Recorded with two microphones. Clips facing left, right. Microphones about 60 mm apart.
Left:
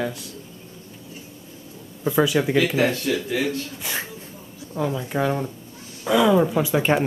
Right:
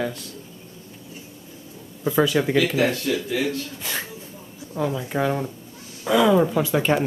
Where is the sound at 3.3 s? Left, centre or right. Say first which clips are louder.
Even; centre.